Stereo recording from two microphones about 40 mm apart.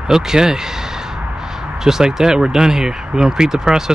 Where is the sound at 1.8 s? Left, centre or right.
Centre.